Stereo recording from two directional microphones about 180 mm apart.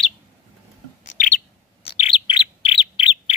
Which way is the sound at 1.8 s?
30° left (ahead or behind).